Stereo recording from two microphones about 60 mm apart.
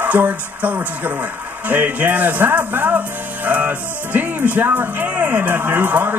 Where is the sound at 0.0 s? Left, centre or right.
Right.